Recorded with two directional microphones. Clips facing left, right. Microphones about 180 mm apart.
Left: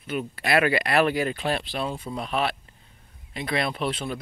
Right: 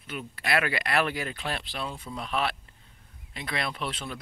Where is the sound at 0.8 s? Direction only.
40° left (ahead or behind).